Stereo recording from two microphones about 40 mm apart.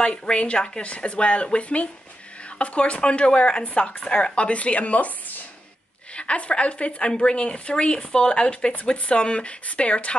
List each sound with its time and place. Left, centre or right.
0.0 s a woman's voice: left
6.1 s a woman's voice: left